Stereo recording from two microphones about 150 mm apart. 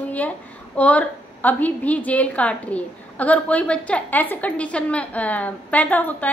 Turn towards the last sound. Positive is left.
turn(degrees=10)  # may be behind; listen again after turning